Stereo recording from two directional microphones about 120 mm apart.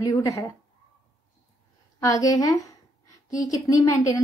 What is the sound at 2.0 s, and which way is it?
A woman's voice, 30° left (ahead or behind).